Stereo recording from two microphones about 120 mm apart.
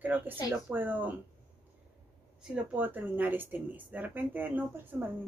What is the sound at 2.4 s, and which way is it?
Speech, 15° right (ahead or behind).